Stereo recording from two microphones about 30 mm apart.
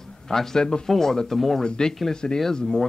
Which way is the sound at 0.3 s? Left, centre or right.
Centre.